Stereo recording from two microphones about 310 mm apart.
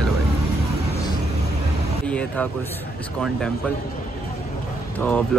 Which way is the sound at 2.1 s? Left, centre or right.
Centre.